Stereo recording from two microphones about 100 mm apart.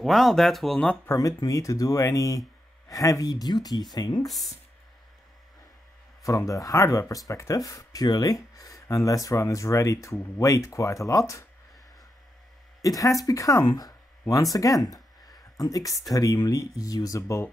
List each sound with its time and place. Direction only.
0.0 s speech: centre (ahead or behind)
1.0 s speech: 35° left (ahead or behind)
6.2 s speech: 35° left (ahead or behind)
12.8 s speech: 35° left (ahead or behind)